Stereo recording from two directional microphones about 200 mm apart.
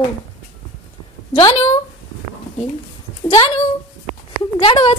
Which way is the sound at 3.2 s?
30° left (ahead or behind).